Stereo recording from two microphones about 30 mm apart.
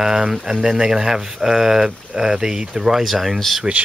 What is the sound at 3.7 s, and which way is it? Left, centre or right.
Speech, right.